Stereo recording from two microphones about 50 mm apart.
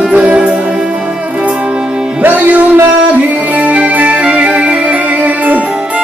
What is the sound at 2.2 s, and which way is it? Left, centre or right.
Music, right.